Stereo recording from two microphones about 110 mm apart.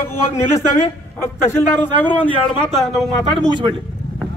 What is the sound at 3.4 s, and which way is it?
Speech, 45° right (ahead or behind).